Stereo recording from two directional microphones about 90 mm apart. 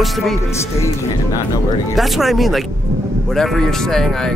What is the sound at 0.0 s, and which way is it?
Speech, centre (ahead or behind).